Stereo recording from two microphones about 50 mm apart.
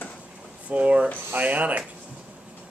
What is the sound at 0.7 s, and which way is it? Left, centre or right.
Speech, right.